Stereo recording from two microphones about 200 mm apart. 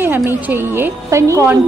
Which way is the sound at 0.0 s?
10° right (ahead or behind).